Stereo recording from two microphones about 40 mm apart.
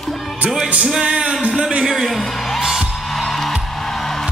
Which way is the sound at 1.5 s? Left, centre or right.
Centre.